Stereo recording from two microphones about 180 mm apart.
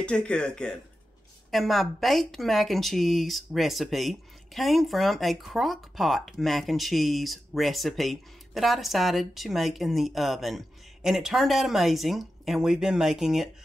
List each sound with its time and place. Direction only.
0.0 s speech: 5° left (ahead or behind)